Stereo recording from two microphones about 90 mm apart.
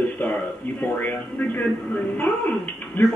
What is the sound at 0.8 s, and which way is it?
Speech, 20° left (ahead or behind).